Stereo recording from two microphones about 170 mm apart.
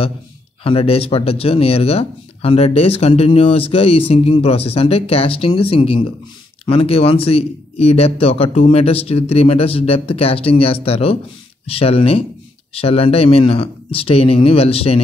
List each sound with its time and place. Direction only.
0.7 s speech: 35° left (ahead or behind)